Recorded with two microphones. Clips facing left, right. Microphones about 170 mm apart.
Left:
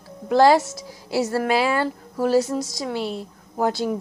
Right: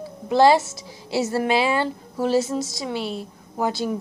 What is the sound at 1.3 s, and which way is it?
Speech, 20° right (ahead or behind).